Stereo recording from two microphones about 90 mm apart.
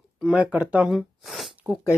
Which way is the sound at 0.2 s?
10° right (ahead or behind).